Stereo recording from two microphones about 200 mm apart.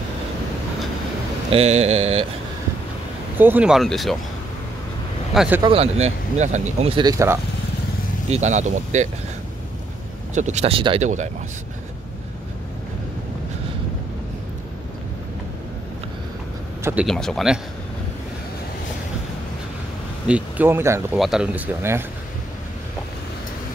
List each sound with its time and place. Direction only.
1.5 s speech: 30° right (ahead or behind)
3.3 s speech: 10° right (ahead or behind)
5.3 s speech: 5° right (ahead or behind)
5.6 s speech: 30° right (ahead or behind)
8.3 s speech: 35° right (ahead or behind)
10.3 s speech: 35° right (ahead or behind)
16.8 s speech: 5° right (ahead or behind)
20.2 s speech: 5° right (ahead or behind)